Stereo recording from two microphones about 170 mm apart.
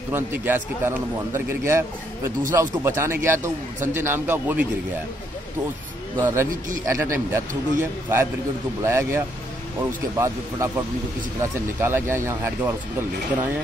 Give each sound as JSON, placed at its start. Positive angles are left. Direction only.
{"t": 0.1, "sound": "a man's voice", "side_deg": -10}
{"t": 6.2, "sound": "a man's voice", "side_deg": -15}
{"t": 11.8, "sound": "a man's voice", "side_deg": -15}